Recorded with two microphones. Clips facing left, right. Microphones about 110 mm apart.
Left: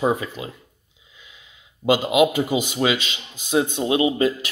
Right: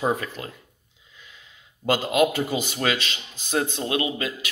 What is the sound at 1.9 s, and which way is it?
Speech, 10° left (ahead or behind).